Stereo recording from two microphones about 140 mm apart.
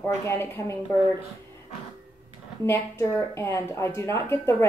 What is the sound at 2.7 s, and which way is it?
A woman's voice, 20° left (ahead or behind).